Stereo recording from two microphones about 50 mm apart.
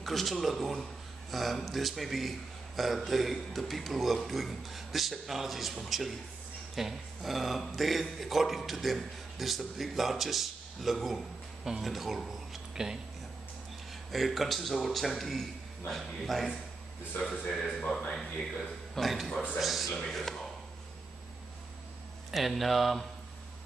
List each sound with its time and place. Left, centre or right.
0.0 s a man's voice: centre
14.1 s a man's voice: centre
17.2 s a man's voice: centre
18.1 s a man's voice: centre
22.3 s a man's voice: centre